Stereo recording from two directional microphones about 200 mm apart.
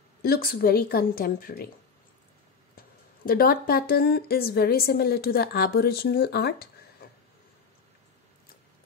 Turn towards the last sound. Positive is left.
turn(degrees=55)  # may be behind; listen again after turning